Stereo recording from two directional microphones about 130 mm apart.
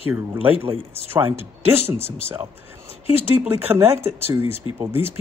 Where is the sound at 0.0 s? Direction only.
15° right (ahead or behind).